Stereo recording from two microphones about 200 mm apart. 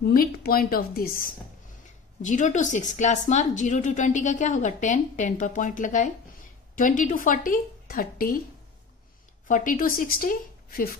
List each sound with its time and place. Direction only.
0.0 s a woman's voice: 50° left (ahead or behind)
9.5 s a woman's voice: 40° left (ahead or behind)